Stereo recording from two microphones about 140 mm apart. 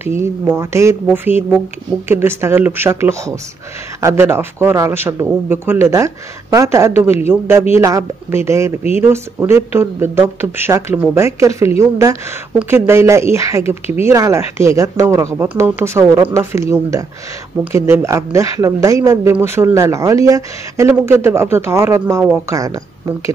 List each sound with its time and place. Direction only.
0.0 s speech: 15° right (ahead or behind)